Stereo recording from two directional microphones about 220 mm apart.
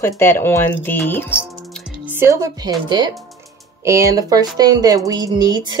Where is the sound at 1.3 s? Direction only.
5° right (ahead or behind).